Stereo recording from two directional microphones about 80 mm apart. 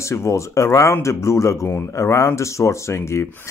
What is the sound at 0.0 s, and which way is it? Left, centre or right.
Speech, left.